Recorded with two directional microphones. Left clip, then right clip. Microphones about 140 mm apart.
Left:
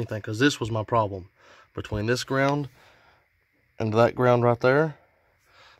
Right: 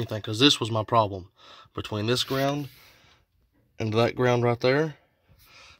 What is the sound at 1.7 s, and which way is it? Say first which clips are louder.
Speech: even; centre (ahead or behind).